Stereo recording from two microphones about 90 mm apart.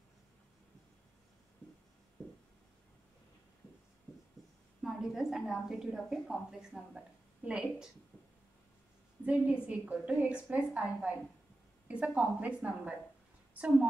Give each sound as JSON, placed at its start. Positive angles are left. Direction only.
{"t": 4.8, "sound": "a woman's voice", "side_deg": -5}
{"t": 9.2, "sound": "a woman's voice", "side_deg": -15}